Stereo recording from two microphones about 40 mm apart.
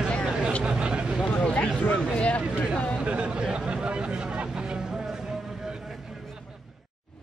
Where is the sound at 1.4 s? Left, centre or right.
Left.